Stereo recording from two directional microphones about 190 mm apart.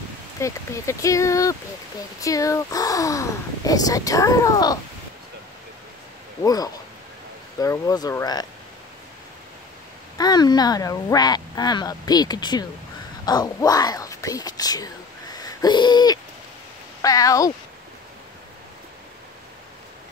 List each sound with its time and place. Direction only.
0.4 s speech: 15° left (ahead or behind)
6.4 s speech: 20° left (ahead or behind)
10.1 s speech: 20° left (ahead or behind)
15.3 s owl: 20° left (ahead or behind)
17.0 s speech: 15° left (ahead or behind)